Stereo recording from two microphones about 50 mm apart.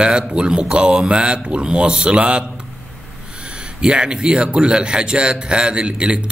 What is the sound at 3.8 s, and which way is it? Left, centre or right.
Speech, centre.